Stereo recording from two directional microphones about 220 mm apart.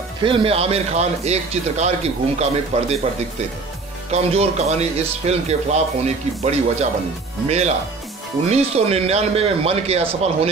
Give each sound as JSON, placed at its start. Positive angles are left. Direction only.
{"t": 0.2, "sound": "speech", "side_deg": -25}
{"t": 4.1, "sound": "speech", "side_deg": -30}